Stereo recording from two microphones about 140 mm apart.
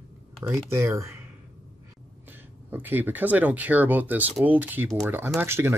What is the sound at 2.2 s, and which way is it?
Speech, 15° right (ahead or behind).